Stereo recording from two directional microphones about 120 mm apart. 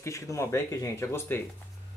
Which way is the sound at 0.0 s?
25° left (ahead or behind).